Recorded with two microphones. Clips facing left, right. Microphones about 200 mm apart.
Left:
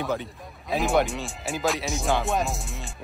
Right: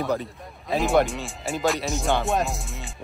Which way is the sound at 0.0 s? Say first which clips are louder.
Right 2 dB; centre (ahead or behind).